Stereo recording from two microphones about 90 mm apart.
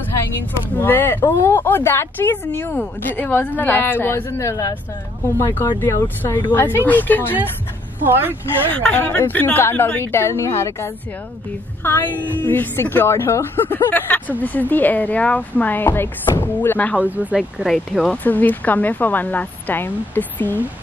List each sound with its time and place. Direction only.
0.7 s speech: 25° left (ahead or behind)
8.0 s speech: 25° right (ahead or behind)
8.8 s speech: 20° left (ahead or behind)
17.0 s speech: 15° right (ahead or behind)
18.0 s speech: 15° left (ahead or behind)